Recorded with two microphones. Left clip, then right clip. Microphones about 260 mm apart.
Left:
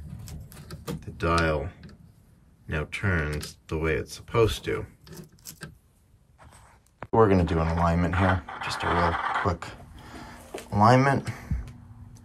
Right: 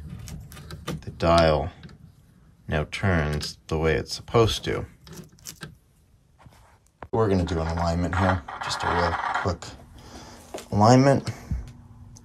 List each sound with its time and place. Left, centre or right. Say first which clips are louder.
0.2 s typing: right 3 dB; centre
2.6 s speech: right 3 dB; centre
7.1 s speech: left 3 dB; centre